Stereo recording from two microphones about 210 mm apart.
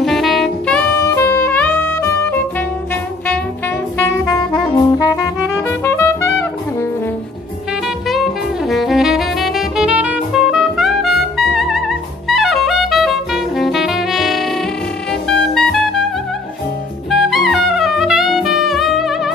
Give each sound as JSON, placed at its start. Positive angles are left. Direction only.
{"t": 0.0, "sound": "saxophone", "side_deg": 0}
{"t": 4.0, "sound": "music", "side_deg": 10}
{"t": 4.9, "sound": "saxophone", "side_deg": 20}
{"t": 5.7, "sound": "music", "side_deg": 10}
{"t": 8.1, "sound": "saxophone", "side_deg": 0}
{"t": 15.2, "sound": "music", "side_deg": 0}
{"t": 17.1, "sound": "music", "side_deg": 0}